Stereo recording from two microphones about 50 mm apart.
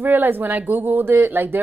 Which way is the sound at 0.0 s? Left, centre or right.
Right.